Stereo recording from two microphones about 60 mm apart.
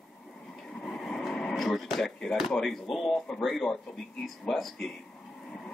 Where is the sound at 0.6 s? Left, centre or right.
Centre.